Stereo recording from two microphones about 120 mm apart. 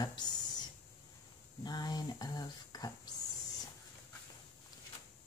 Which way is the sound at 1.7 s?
35° left (ahead or behind).